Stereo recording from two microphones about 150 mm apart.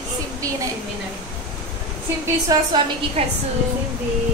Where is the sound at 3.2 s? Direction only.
45° right (ahead or behind).